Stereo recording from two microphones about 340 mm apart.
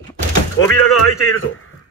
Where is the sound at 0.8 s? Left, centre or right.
Left.